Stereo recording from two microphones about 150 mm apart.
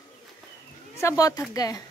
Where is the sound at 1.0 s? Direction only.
20° left (ahead or behind).